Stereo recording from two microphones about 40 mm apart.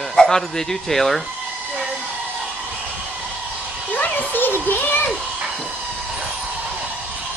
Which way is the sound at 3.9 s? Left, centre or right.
Left.